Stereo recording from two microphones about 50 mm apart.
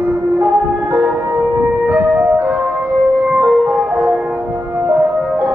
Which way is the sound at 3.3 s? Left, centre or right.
Right.